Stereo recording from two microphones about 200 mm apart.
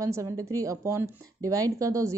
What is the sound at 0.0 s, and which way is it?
A woman's voice, 15° right (ahead or behind).